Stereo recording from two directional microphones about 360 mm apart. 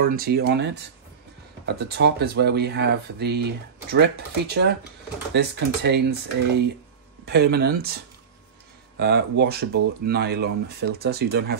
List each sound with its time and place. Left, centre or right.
0.1 s speech: right
1.8 s speech: right